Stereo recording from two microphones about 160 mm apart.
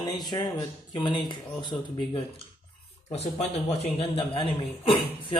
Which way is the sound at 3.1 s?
45° left (ahead or behind).